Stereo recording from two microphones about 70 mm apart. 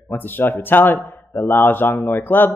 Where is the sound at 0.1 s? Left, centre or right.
Left.